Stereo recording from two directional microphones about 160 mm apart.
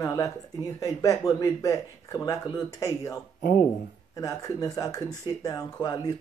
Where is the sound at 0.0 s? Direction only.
20° left (ahead or behind).